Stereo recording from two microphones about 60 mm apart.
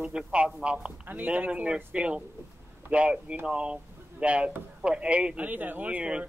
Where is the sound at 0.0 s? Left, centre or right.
Centre.